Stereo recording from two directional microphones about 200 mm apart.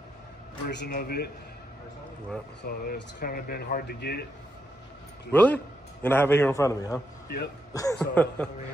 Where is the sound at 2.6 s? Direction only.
50° left (ahead or behind).